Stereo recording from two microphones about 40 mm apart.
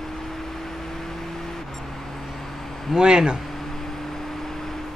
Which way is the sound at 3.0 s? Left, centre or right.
Right.